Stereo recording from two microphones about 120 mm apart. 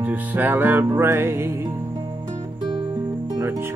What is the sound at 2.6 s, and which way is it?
Music, 40° right (ahead or behind).